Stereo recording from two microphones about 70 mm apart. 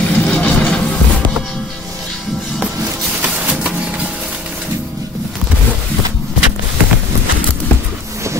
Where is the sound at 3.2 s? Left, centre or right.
Centre.